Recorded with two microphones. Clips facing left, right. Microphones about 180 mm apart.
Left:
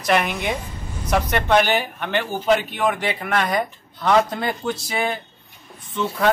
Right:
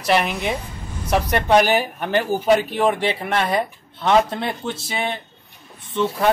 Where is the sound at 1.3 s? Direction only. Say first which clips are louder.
Right 3 dB; 40° right (ahead or behind).